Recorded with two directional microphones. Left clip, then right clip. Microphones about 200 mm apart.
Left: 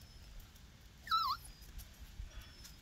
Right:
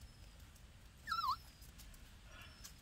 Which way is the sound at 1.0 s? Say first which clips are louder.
Left 4 dB; centre (ahead or behind).